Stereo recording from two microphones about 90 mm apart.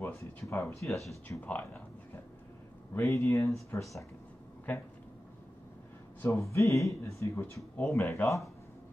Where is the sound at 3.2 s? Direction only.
35° left (ahead or behind).